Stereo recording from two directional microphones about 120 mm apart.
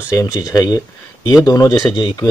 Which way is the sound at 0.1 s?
25° left (ahead or behind).